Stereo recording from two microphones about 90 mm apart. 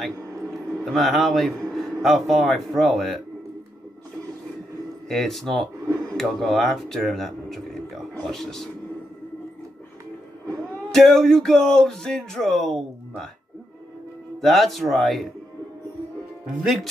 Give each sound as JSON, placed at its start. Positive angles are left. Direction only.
{"t": 0.1, "sound": "a sound", "side_deg": -35}
{"t": 0.8, "sound": "speech", "side_deg": 0}
{"t": 5.0, "sound": "speech", "side_deg": 0}
{"t": 10.6, "sound": "speech", "side_deg": 5}
{"t": 14.4, "sound": "speech", "side_deg": 0}
{"t": 16.6, "sound": "speech", "side_deg": 0}